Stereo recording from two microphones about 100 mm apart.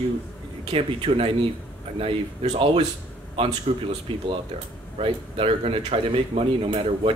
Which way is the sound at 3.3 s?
60° right (ahead or behind).